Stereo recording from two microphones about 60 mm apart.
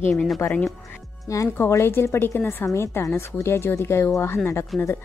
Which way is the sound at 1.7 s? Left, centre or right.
Left.